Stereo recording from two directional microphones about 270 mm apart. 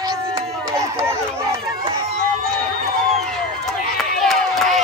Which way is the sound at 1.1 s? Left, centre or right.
Centre.